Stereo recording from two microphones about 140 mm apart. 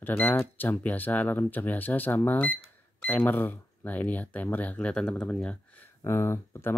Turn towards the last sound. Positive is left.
turn(degrees=20)  # may be behind; listen again after turning